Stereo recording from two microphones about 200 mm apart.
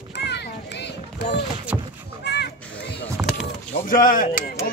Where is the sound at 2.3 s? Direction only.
55° left (ahead or behind).